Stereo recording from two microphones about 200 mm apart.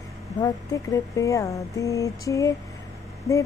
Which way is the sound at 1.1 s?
15° left (ahead or behind).